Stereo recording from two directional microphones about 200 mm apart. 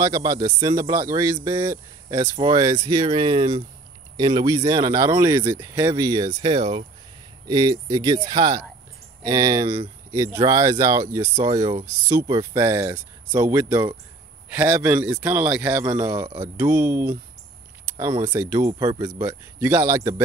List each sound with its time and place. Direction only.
0.0 s speech: 20° right (ahead or behind)
18.3 s speech: 10° right (ahead or behind)